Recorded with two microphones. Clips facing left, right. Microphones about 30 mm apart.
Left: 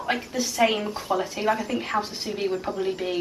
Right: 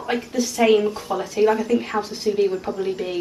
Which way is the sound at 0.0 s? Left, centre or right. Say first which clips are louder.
Right 3 dB; centre.